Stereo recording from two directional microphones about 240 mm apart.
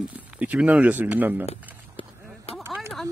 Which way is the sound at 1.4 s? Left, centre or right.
Left.